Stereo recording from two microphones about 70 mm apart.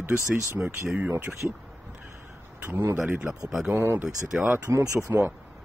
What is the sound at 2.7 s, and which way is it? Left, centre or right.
Speech, right.